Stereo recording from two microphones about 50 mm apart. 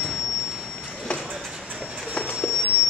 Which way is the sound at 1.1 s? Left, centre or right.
Left.